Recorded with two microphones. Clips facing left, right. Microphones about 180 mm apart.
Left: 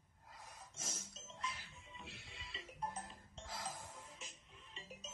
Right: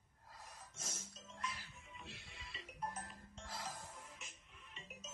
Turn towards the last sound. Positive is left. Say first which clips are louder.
# left 2 dB
turn(degrees=30)  # may be behind; listen again after turning